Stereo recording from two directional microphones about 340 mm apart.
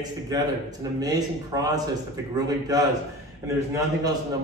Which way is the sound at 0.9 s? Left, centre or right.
Centre.